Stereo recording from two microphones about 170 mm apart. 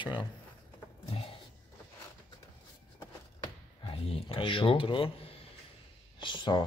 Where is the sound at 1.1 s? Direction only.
35° left (ahead or behind).